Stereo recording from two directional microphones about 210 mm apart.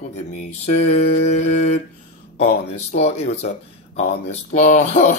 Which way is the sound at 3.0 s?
30° left (ahead or behind).